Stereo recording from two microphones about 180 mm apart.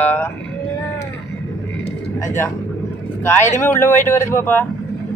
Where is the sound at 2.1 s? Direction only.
15° left (ahead or behind).